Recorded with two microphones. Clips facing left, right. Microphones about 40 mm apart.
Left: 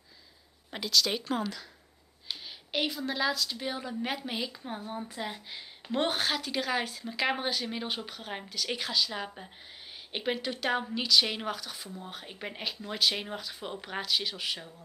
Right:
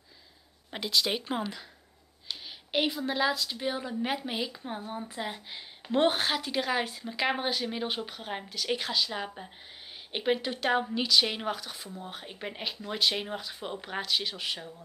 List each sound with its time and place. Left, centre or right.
0.7 s speech: centre
2.7 s a woman's voice: centre